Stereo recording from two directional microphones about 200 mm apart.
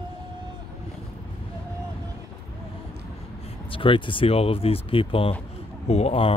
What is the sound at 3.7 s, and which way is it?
Speech, 25° left (ahead or behind).